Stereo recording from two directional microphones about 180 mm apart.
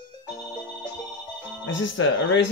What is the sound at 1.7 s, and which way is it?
Speech, 90° left.